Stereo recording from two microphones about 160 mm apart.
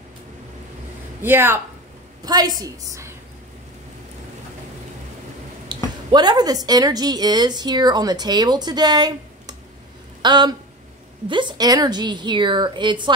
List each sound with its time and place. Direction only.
1.2 s a woman's voice: 15° right (ahead or behind)
5.7 s a sound: 25° right (ahead or behind)
6.1 s a woman's voice: 25° right (ahead or behind)